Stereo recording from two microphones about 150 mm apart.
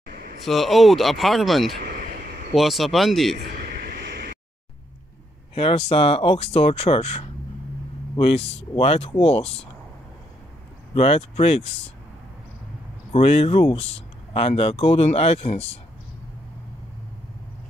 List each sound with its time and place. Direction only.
0.0 s a sound: 85° right
0.5 s speech: centre (ahead or behind)
1.8 s vehicle: 80° right
2.5 s speech: centre (ahead or behind)
3.5 s vehicle: 90° right
5.5 s speech: 35° left (ahead or behind)
11.0 s speech: 40° left (ahead or behind)
13.1 s speech: 40° left (ahead or behind)